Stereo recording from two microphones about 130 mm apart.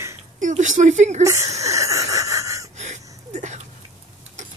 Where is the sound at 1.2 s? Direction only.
25° right (ahead or behind).